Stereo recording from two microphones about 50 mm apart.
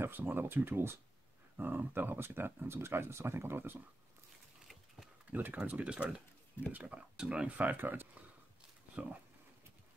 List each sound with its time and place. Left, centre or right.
0.0 s speech: right
5.3 s speech: right
7.2 s speech: centre
7.7 s speech: right
9.0 s speech: right